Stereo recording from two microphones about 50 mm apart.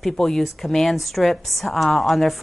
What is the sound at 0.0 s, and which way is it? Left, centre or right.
A woman's voice, centre.